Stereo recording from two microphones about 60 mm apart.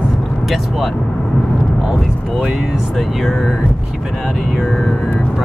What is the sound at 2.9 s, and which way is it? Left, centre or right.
Speech, centre.